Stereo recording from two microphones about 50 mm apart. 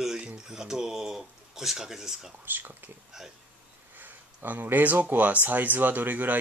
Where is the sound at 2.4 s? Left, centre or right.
Right.